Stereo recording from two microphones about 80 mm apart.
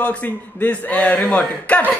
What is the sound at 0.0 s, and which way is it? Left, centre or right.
A man's voice, centre.